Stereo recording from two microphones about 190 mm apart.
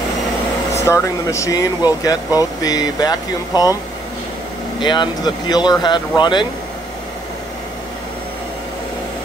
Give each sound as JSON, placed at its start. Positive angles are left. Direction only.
{"t": 0.7, "sound": "speech", "side_deg": 15}
{"t": 4.7, "sound": "speech", "side_deg": 25}